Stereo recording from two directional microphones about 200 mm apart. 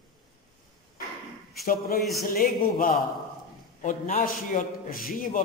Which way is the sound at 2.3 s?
45° left (ahead or behind).